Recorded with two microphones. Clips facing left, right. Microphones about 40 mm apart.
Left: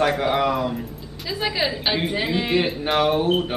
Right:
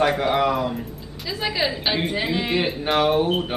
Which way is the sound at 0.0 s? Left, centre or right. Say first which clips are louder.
Even; centre.